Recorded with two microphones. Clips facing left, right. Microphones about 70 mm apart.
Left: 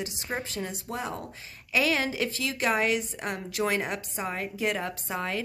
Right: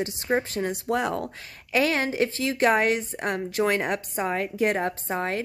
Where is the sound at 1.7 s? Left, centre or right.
Right.